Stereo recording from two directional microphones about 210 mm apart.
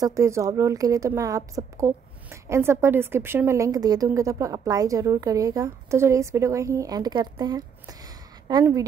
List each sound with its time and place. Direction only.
0.0 s a woman's voice: 15° right (ahead or behind)